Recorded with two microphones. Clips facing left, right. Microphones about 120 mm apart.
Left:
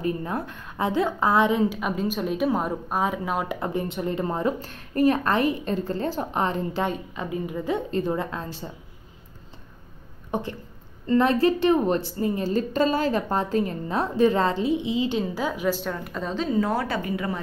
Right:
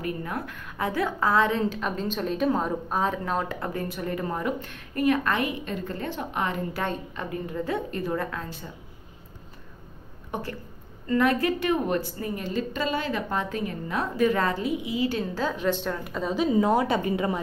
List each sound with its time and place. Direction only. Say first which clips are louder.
0.0 s a woman's voice: left 4 dB; 25° left (ahead or behind); by 3.5 s 10° left (ahead or behind)
3.5 s a woman's voice: left 3 dB; 20° left (ahead or behind)
6.8 s a woman's voice: left 3 dB; 15° left (ahead or behind)
11.1 s a woman's voice: left 3 dB; 30° left (ahead or behind); by 16.4 s 5° right (ahead or behind)
16.5 s a woman's voice: right 2 dB; 20° right (ahead or behind)